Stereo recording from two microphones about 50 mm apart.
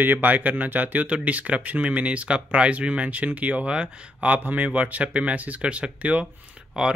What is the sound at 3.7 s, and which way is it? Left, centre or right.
Speech, right.